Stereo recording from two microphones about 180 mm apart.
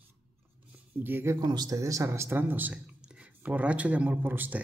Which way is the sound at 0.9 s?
10° right (ahead or behind).